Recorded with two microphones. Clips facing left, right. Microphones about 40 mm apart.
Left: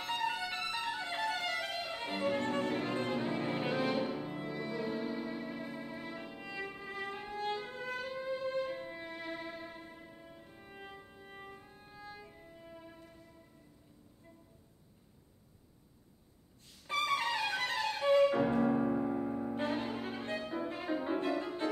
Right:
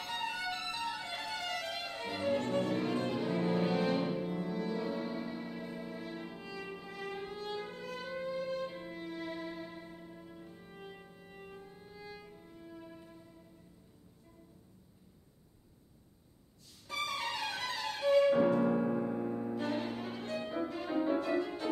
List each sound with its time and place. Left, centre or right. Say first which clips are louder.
0.1 s music: left 2 dB; left
4.8 s music: even; centre; by 7.2 s left
7.3 s violin: left 8 dB; left
7.7 s music: left 2 dB; left
16.8 s music: left 4 dB; left
18.6 s music: even; centre
19.5 s violin: even; left
20.6 s music: right 1 dB; left